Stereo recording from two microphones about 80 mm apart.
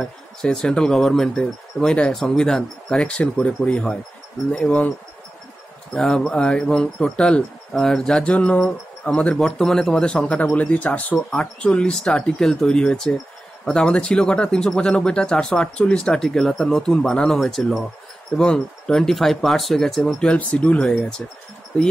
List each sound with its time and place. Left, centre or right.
0.0 s speech: centre
5.9 s speech: centre